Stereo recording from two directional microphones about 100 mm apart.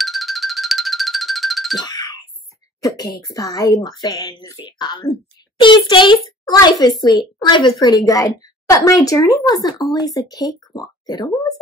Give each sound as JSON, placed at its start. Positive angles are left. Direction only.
{"t": 0.0, "sound": "music", "side_deg": 0}
{"t": 1.9, "sound": "a sound", "side_deg": 40}
{"t": 2.8, "sound": "a woman's voice", "side_deg": 35}
{"t": 5.6, "sound": "a woman's voice", "side_deg": 50}